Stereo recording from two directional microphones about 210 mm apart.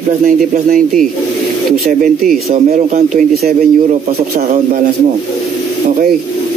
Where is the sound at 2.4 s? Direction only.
35° right (ahead or behind).